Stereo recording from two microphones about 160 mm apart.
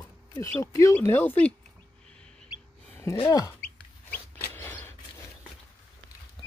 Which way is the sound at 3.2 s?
20° left (ahead or behind).